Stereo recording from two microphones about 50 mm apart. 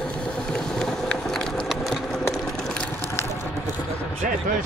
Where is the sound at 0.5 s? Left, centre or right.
Centre.